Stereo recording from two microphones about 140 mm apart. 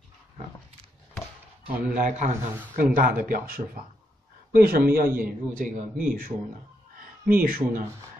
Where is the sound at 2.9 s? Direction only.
90° right.